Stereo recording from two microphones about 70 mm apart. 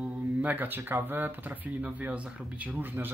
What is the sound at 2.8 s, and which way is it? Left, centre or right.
Speech, right.